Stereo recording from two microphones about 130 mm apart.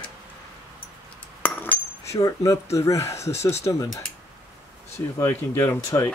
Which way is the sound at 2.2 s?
25° left (ahead or behind).